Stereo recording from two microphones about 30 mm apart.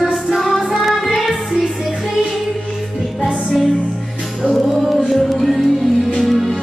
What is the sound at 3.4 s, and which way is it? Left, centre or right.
Music, centre.